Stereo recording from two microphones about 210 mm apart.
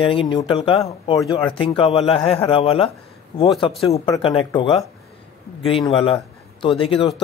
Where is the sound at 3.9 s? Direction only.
25° left (ahead or behind).